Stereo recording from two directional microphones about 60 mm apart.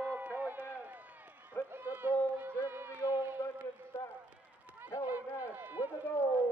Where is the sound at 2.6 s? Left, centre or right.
Right.